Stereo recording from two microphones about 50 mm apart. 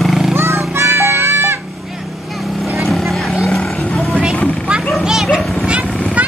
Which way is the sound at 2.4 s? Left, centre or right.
Centre.